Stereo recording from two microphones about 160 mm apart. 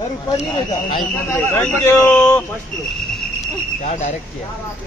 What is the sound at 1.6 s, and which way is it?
Speech, 15° left (ahead or behind).